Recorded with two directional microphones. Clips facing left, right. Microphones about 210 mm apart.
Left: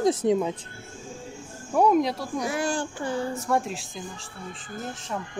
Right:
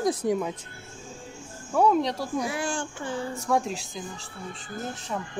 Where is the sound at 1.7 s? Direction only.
15° left (ahead or behind).